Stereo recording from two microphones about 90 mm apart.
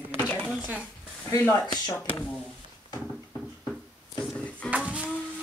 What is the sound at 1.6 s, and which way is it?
Speech, 50° left (ahead or behind).